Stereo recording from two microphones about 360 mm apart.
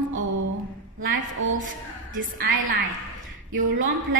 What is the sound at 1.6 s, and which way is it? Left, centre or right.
Speech, right.